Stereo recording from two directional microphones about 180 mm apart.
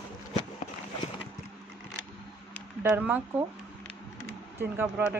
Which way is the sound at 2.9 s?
10° right (ahead or behind).